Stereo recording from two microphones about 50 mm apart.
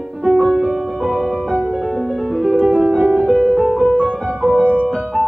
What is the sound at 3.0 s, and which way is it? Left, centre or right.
Music, right.